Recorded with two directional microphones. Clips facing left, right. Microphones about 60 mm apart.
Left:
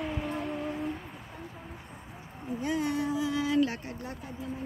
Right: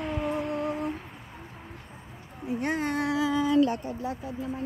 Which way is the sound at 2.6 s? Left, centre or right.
Right.